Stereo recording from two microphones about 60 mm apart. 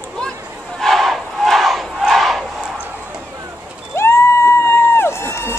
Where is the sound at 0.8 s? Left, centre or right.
Centre.